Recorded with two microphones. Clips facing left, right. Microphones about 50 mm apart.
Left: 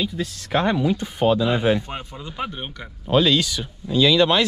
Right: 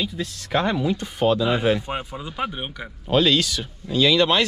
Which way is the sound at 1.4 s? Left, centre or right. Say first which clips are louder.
Left 1 dB; centre.